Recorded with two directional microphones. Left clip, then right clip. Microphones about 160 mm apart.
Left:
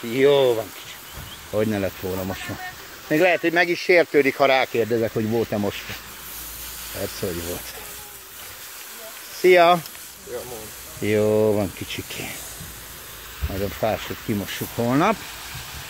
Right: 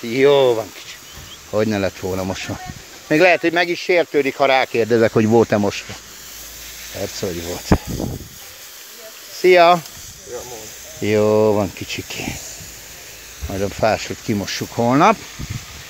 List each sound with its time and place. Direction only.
0.0 s speech: 40° right (ahead or behind)
3.5 s speech: 15° right (ahead or behind)
4.8 s speech: 50° right (ahead or behind)
5.2 s speech: 90° right
5.5 s speech: 45° right (ahead or behind)
6.9 s speech: 25° right (ahead or behind)
9.4 s speech: 25° right (ahead or behind)
11.0 s speech: 30° right (ahead or behind)
13.5 s speech: 40° right (ahead or behind)